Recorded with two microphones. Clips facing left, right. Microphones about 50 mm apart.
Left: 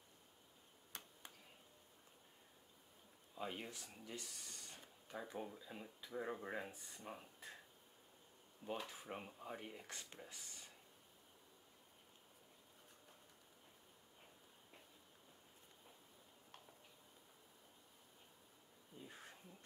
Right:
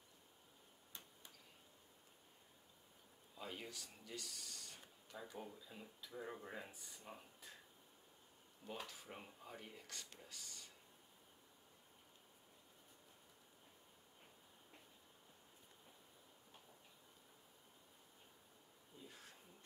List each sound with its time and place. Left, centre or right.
0.9 s tick-tock: left
3.3 s speech: left
8.8 s speech: left
18.9 s a sound: left